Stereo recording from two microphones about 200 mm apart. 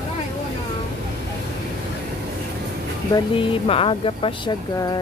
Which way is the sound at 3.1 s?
25° left (ahead or behind).